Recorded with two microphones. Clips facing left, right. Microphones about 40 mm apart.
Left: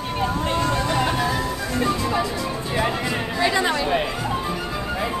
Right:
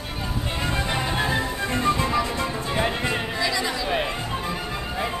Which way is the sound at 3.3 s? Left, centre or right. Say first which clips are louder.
Left 5 dB; left.